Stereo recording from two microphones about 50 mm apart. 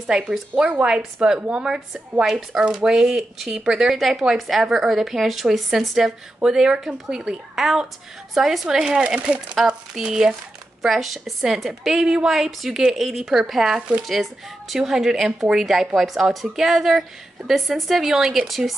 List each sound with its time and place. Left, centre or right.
0.5 s speech: right
9.7 s a woman's voice: centre